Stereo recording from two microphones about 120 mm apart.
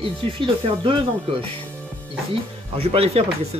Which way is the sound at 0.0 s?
45° right (ahead or behind).